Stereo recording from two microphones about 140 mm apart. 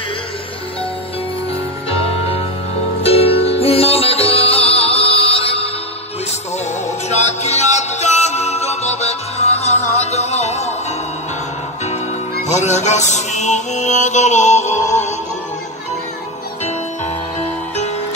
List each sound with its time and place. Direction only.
1.9 s music: 45° left (ahead or behind)
7.1 s music: 55° left (ahead or behind)
12.4 s music: 55° left (ahead or behind)
16.6 s music: 50° left (ahead or behind)